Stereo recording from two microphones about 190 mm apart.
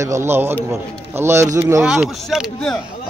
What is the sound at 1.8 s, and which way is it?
Speech, 5° right (ahead or behind).